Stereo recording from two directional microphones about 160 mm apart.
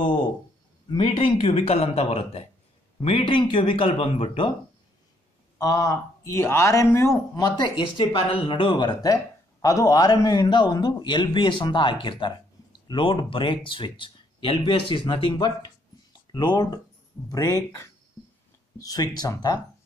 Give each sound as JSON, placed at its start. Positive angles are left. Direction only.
{"t": 0.8, "sound": "speech", "side_deg": 30}
{"t": 5.6, "sound": "speech", "side_deg": 20}